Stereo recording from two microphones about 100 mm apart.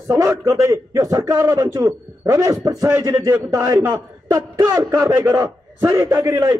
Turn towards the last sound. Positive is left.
turn(degrees=-30)  # may be behind; listen again after turning